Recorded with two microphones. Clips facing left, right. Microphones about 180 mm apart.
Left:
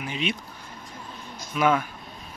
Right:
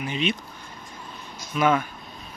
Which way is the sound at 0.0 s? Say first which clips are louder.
Right 3 dB; 5° left (ahead or behind).